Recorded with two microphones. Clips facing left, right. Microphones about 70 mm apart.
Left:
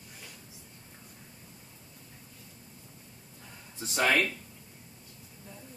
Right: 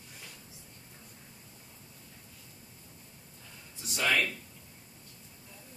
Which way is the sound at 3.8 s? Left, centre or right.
Left.